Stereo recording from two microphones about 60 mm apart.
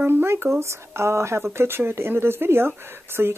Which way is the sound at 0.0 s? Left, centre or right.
Right.